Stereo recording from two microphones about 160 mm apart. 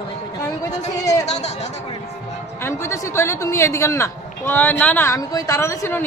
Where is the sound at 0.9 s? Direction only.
20° left (ahead or behind).